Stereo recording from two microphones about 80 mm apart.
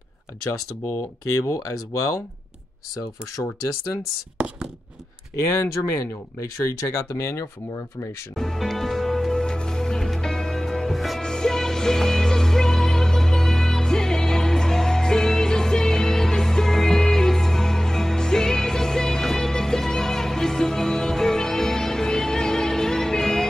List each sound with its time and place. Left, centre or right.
0.5 s speech: left
4.4 s a sound: centre
5.5 s speech: left
8.4 s music: centre